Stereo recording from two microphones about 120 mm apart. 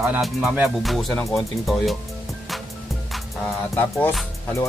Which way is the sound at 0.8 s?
Centre (ahead or behind).